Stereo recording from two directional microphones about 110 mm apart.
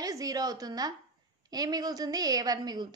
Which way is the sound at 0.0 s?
35° right (ahead or behind).